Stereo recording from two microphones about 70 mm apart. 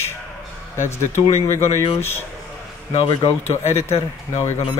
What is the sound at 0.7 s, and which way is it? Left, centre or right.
Speech, left.